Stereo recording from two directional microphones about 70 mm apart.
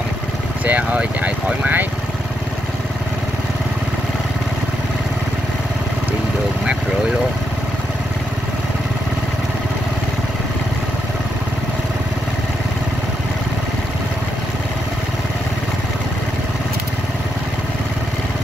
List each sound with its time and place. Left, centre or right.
0.7 s speech: centre